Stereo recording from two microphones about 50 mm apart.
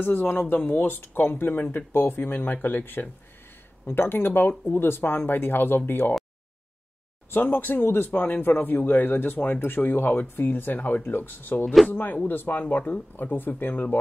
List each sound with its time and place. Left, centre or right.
0.0 s speech: left
7.2 s speech: left